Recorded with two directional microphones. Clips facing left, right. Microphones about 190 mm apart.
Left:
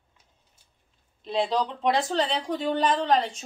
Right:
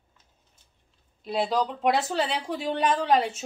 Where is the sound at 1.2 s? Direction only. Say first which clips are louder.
Even; 5° right (ahead or behind).